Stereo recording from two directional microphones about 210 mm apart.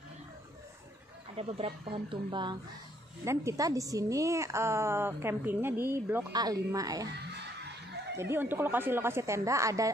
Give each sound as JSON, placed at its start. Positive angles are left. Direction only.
{"t": 1.3, "sound": "a woman's voice", "side_deg": -30}
{"t": 8.2, "sound": "a woman's voice", "side_deg": -10}